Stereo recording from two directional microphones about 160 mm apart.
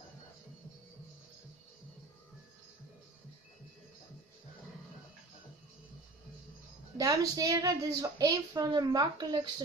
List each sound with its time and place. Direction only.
7.0 s a woman's voice: 20° right (ahead or behind)